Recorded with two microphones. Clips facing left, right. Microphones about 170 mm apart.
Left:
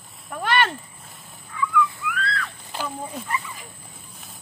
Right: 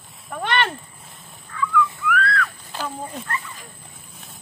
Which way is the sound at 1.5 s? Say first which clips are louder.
Right 1 dB; 15° left (ahead or behind).